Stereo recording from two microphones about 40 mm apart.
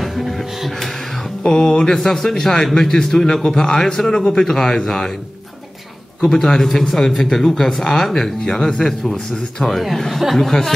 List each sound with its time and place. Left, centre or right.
0.0 s music: centre
0.6 s speech: centre
1.4 s a sound: centre
2.0 s speech: centre
6.2 s speech: centre